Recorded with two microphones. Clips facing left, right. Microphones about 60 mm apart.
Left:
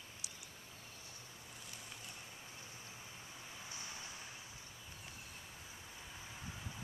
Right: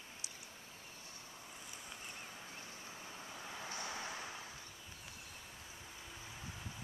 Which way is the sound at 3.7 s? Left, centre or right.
Right.